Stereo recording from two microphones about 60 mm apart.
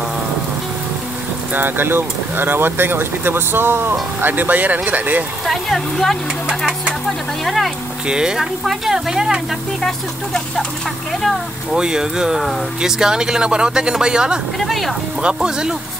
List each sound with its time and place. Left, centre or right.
1.5 s speech: right
5.5 s speech: centre
7.4 s speech: centre
8.1 s speech: centre
9.8 s speech: centre
11.7 s speech: centre
14.6 s speech: centre
15.2 s speech: centre